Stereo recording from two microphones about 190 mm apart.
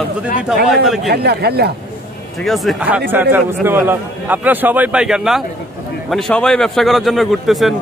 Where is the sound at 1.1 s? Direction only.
60° right (ahead or behind).